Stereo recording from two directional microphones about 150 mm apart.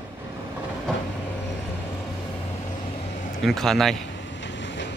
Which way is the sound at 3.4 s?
Centre (ahead or behind).